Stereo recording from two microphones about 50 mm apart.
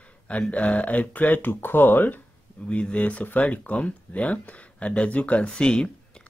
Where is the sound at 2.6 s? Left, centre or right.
Left.